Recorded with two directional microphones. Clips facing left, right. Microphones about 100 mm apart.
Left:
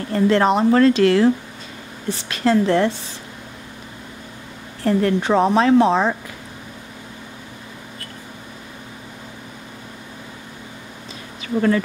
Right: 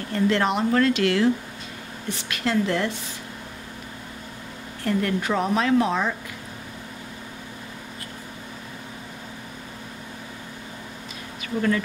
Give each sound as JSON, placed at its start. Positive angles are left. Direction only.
{"t": 0.1, "sound": "a woman's voice", "side_deg": 35}
{"t": 4.8, "sound": "a woman's voice", "side_deg": 35}